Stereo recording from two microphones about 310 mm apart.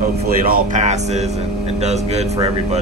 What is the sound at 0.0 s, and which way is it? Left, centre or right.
Speech, right.